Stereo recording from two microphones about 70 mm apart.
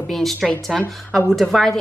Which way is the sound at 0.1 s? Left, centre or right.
Centre.